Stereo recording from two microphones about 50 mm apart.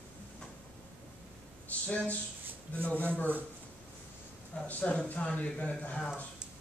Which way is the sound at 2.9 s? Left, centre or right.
Left.